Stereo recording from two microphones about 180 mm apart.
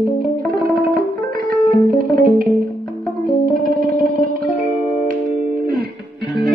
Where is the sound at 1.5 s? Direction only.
55° right (ahead or behind).